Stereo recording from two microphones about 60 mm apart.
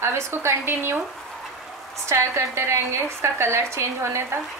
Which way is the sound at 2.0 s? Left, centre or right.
Right.